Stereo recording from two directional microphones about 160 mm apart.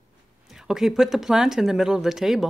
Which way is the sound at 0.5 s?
Centre (ahead or behind).